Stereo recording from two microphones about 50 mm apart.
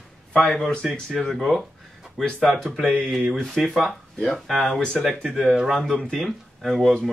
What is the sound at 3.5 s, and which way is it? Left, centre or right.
Speech, centre.